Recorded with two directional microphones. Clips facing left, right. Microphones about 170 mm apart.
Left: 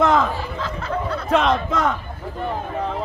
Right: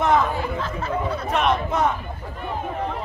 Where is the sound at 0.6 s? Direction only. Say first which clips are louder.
Even; 90° left.